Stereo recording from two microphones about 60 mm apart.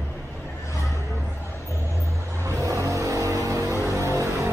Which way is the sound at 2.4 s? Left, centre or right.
Right.